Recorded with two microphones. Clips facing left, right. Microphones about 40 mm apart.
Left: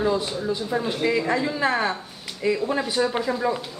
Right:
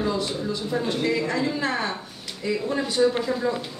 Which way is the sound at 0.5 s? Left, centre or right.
Centre.